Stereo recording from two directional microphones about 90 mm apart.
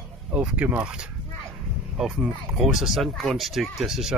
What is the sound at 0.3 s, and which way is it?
Speech, 15° right (ahead or behind).